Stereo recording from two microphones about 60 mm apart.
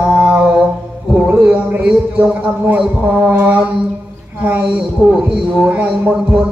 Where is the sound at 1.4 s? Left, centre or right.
Centre.